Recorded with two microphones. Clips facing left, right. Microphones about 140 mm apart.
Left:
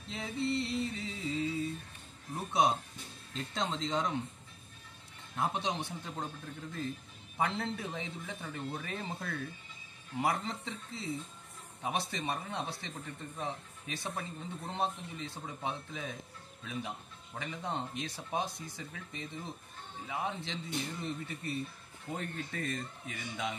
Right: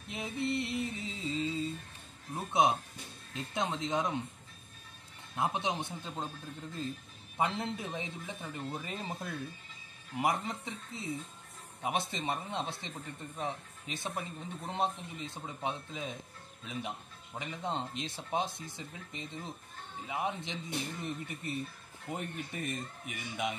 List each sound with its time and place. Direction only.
0.1 s music: 20° right (ahead or behind)
2.3 s speech: 20° right (ahead or behind)
5.3 s speech: 20° right (ahead or behind)
7.3 s speech: 20° right (ahead or behind)